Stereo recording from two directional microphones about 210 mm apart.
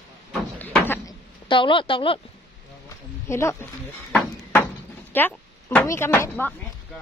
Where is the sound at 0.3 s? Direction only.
5° left (ahead or behind).